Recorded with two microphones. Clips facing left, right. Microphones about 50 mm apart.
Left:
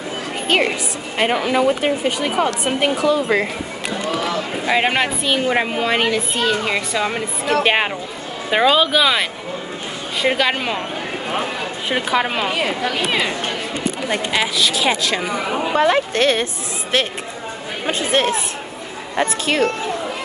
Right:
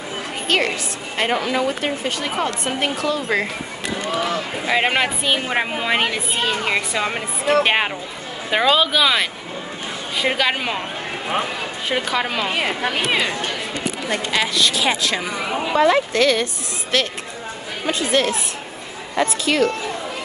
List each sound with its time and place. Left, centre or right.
0.5 s a woman's voice: centre
4.2 s speech: centre
7.6 s speech: centre
11.9 s a woman's voice: centre
12.6 s speech: centre
13.1 s a woman's voice: centre
14.6 s speech: centre
15.7 s a woman's voice: left
16.9 s a woman's voice: left